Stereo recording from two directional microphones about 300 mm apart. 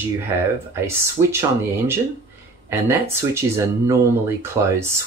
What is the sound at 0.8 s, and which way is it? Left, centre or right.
Speech, centre.